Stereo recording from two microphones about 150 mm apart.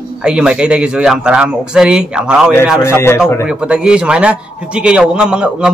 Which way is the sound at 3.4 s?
5° right (ahead or behind).